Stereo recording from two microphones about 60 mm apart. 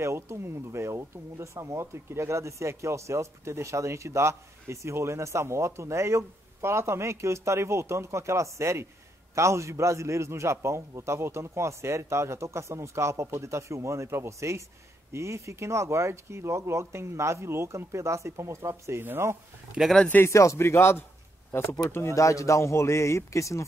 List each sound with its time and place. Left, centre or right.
0.0 s speech: right
19.8 s speech: centre
20.2 s a man's voice: left